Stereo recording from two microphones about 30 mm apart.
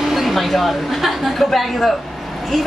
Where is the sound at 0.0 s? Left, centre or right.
Centre.